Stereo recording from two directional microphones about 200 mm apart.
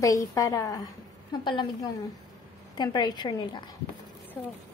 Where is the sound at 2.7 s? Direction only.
20° left (ahead or behind).